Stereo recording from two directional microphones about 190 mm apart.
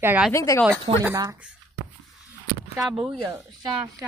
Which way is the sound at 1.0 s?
15° right (ahead or behind).